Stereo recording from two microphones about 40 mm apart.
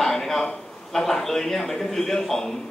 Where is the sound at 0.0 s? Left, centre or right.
Centre.